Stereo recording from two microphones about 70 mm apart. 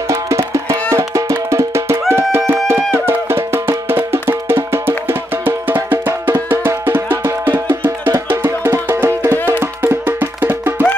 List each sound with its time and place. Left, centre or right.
0.1 s music: right
1.5 s wood block: right
2.7 s music: right
9.5 s music: right
10.0 s music: right